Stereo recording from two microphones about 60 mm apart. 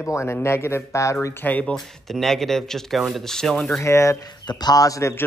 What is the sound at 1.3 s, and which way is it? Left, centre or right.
Speech, left.